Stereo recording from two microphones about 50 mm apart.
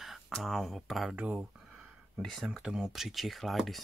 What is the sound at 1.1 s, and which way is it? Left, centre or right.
Speech, right.